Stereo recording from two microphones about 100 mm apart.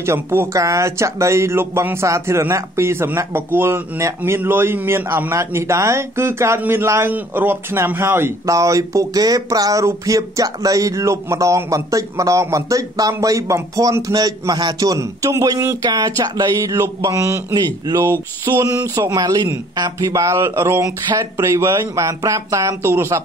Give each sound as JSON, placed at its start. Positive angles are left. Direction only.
{"t": 0.0, "sound": "a man's voice", "side_deg": -25}
{"t": 17.6, "sound": "a man's voice", "side_deg": -40}